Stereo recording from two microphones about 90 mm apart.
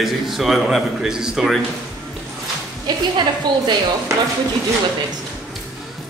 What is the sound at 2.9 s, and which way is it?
Speech, 45° right (ahead or behind).